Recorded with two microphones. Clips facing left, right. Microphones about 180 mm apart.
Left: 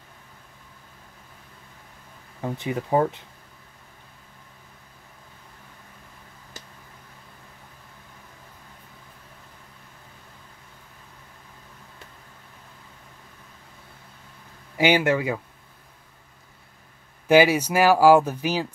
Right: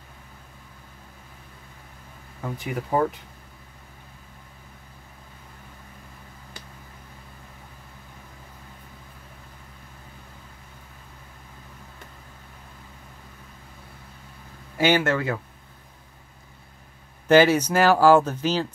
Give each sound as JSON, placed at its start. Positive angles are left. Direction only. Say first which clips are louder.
{"t": 2.4, "sound": "speech", "louder": "left 3 dB", "side_deg": 25}
{"t": 14.8, "sound": "speech", "louder": "left 1 dB", "side_deg": 15}
{"t": 17.3, "sound": "speech", "louder": "right 1 dB", "side_deg": 10}